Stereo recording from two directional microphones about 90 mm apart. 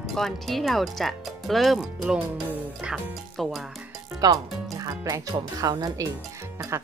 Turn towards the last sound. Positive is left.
turn(degrees=-45)  # may be behind; listen again after turning